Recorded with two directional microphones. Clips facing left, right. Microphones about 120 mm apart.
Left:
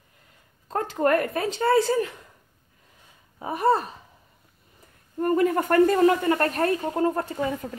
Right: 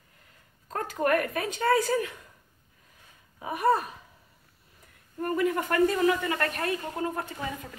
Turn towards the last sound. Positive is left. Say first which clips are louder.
# left 8 dB
turn(degrees=35)  # may be behind; listen again after turning